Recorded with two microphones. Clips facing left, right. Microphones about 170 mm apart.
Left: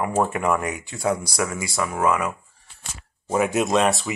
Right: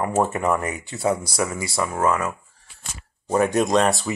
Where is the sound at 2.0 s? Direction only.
15° left (ahead or behind).